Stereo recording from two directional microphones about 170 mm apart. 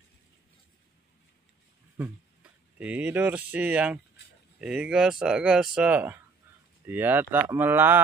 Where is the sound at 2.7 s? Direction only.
10° right (ahead or behind).